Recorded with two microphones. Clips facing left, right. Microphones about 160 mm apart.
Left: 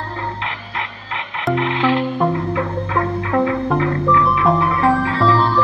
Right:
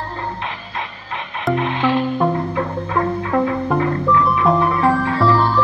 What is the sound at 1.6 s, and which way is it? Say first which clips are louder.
Music: left 2 dB; 90° left.